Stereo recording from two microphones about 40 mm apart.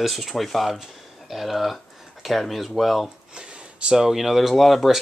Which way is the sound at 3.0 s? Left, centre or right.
Right.